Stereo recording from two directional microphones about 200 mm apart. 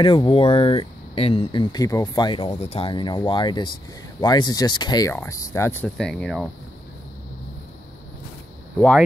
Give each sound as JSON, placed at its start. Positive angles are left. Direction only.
{"t": 0.0, "sound": "speech", "side_deg": 25}